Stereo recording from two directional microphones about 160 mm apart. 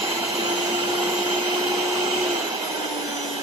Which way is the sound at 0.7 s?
20° right (ahead or behind).